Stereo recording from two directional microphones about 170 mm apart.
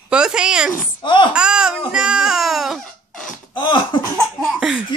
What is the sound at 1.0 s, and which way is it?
Speech, 30° left (ahead or behind).